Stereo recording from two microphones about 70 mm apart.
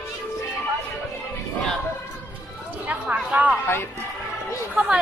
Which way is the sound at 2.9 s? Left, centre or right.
Right.